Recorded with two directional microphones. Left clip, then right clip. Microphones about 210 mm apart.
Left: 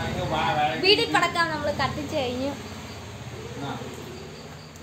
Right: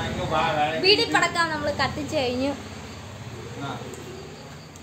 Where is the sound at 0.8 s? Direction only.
5° right (ahead or behind); by 2.3 s 20° right (ahead or behind).